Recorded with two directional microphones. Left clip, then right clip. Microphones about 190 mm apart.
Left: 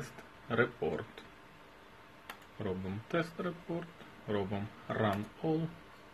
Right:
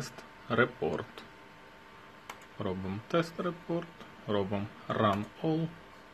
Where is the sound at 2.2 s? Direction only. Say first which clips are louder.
Right 3 dB; 30° right (ahead or behind).